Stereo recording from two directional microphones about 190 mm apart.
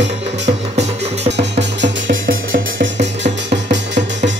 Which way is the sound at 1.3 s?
65° right (ahead or behind).